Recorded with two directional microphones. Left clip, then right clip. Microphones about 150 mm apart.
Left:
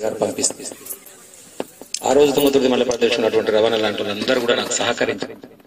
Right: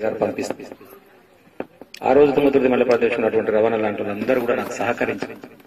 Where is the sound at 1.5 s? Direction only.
35° left (ahead or behind).